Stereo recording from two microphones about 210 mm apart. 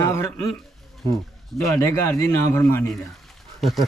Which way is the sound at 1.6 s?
15° left (ahead or behind).